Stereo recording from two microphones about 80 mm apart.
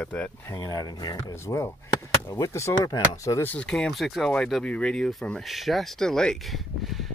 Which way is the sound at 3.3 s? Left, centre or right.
Left.